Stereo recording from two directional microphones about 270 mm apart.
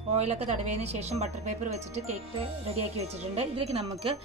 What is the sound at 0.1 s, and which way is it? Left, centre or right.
Speech, right.